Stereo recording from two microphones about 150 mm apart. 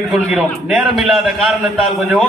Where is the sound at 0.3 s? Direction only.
Centre (ahead or behind).